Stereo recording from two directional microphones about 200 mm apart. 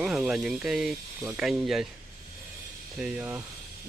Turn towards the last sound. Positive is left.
turn(degrees=-10)  # may be behind; listen again after turning